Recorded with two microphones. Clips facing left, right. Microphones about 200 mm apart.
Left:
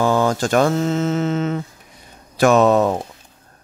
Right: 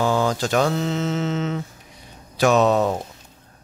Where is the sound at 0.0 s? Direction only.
50° left (ahead or behind).